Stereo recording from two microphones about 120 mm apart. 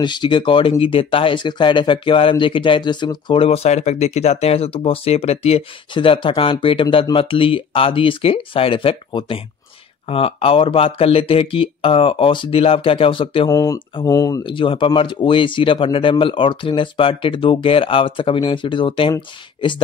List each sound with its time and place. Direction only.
0.0 s speech: 40° left (ahead or behind)
3.4 s speech: 60° left (ahead or behind)
5.9 s speech: 45° left (ahead or behind)
13.5 s speech: 30° left (ahead or behind)
14.4 s speech: 45° left (ahead or behind)